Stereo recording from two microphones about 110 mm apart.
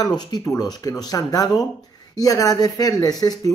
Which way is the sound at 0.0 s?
40° left (ahead or behind).